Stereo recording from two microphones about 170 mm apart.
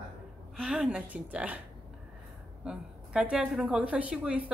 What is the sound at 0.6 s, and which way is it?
A woman's voice, 5° right (ahead or behind).